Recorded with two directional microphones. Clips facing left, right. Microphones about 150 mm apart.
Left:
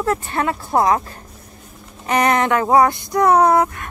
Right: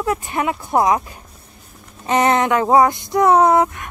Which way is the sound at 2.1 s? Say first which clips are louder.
Right 1 dB; 20° right (ahead or behind).